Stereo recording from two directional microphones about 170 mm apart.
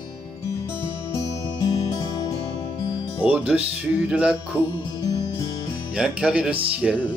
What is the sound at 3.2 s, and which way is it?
Music, 10° right (ahead or behind).